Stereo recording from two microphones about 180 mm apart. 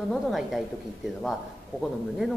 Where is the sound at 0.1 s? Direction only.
Centre (ahead or behind).